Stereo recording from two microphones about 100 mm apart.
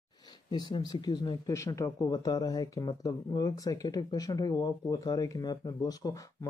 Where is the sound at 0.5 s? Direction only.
45° left (ahead or behind).